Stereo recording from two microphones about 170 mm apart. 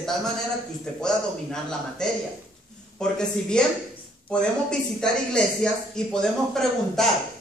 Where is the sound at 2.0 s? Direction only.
5° left (ahead or behind).